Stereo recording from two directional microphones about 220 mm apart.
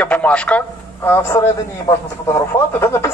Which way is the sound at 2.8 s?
10° left (ahead or behind).